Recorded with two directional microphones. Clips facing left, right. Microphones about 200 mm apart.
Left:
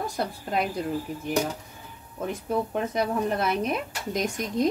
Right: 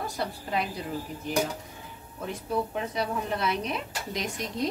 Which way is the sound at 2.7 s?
50° left (ahead or behind).